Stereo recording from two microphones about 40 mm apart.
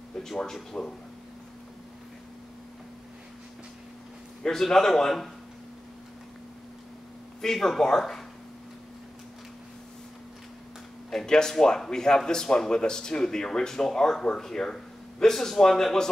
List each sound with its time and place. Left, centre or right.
0.7 s speech: left
4.4 s speech: centre
7.4 s speech: centre
11.1 s speech: centre